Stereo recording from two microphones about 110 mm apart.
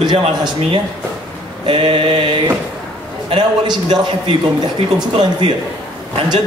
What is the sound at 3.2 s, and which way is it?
A man's voice, 45° right (ahead or behind).